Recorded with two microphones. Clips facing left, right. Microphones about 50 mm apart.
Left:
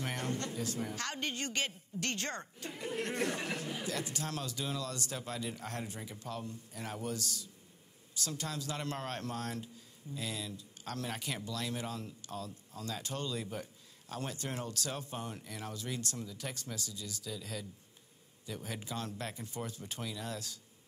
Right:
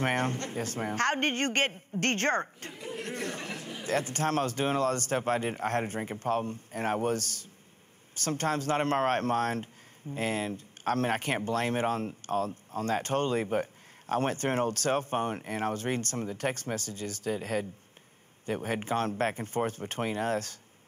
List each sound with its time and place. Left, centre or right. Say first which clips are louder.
0.0 s speech: right 8 dB; right
3.8 s speech: right 9 dB; right